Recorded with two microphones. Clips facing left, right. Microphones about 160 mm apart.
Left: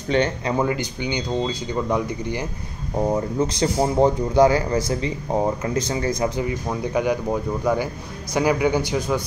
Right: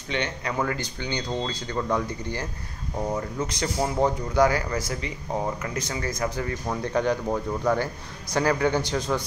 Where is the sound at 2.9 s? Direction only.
30° left (ahead or behind).